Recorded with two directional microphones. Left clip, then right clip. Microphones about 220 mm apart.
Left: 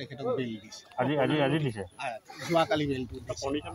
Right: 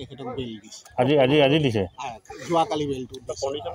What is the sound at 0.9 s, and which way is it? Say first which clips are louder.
Speech: right 9 dB; 55° right (ahead or behind).